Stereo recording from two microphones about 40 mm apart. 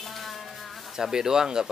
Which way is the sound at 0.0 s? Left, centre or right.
Centre.